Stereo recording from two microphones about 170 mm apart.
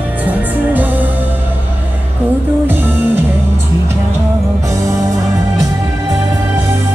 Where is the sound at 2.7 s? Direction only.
10° right (ahead or behind).